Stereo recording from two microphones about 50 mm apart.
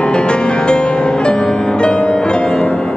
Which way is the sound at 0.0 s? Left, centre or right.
Left.